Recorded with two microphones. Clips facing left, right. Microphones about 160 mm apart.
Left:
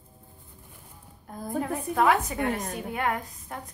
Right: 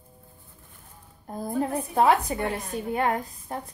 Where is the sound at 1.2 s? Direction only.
30° right (ahead or behind).